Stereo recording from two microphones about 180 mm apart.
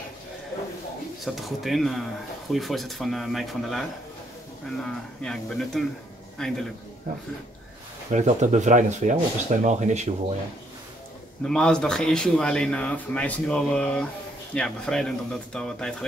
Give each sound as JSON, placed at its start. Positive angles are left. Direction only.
{"t": 1.2, "sound": "a man's voice", "side_deg": 0}
{"t": 8.1, "sound": "speech", "side_deg": -40}
{"t": 11.4, "sound": "a man's voice", "side_deg": 5}